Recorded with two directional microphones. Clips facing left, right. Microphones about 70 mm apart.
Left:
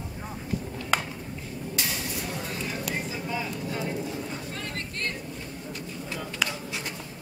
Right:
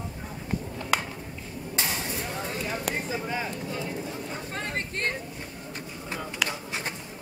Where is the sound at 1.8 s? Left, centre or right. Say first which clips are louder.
Right 3 dB; right.